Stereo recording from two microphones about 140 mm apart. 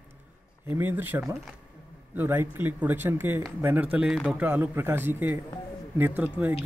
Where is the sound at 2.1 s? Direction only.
15° right (ahead or behind).